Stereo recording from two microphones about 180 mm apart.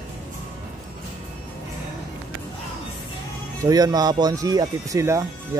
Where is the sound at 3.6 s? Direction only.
20° right (ahead or behind).